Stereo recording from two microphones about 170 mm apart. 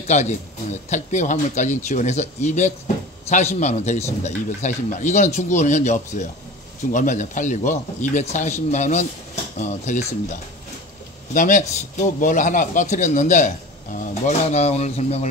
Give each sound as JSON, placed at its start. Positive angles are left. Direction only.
{"t": 0.1, "sound": "speech", "side_deg": 45}
{"t": 11.3, "sound": "speech", "side_deg": 50}